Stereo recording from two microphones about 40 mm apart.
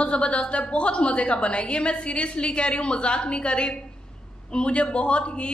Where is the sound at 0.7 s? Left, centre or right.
Left.